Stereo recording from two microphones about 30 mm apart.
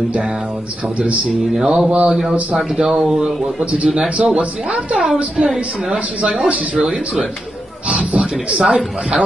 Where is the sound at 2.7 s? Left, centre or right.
Right.